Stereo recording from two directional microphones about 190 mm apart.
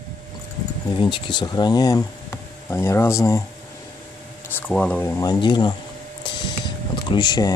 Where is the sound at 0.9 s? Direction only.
25° left (ahead or behind).